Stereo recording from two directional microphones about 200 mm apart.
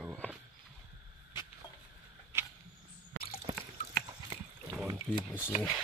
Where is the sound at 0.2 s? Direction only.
5° left (ahead or behind).